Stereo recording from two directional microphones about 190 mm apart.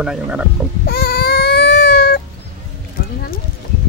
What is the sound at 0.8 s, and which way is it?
Baby cry, 55° left (ahead or behind).